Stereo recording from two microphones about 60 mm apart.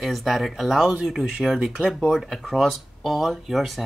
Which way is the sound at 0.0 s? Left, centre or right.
Centre.